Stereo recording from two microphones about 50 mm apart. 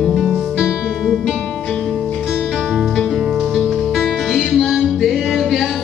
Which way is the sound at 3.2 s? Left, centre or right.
Centre.